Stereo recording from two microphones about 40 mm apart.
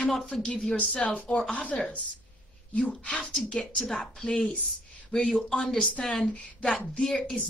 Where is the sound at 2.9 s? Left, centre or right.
Left; by 6.2 s centre.